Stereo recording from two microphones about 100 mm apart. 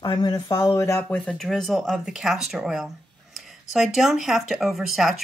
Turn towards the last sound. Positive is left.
turn(degrees=0)  # may be behind; listen again after turning